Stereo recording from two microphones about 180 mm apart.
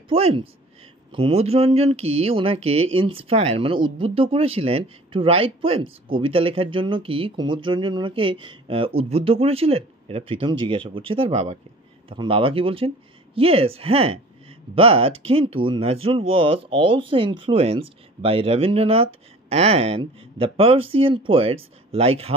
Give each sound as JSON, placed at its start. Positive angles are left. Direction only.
{"t": 0.1, "sound": "speech", "side_deg": -30}